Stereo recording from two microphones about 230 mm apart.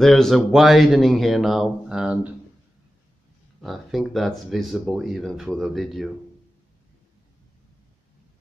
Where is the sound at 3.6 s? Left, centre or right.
Centre.